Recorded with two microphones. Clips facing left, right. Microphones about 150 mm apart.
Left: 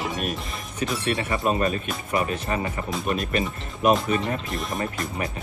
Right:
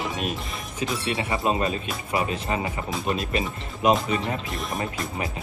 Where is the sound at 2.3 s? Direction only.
20° right (ahead or behind).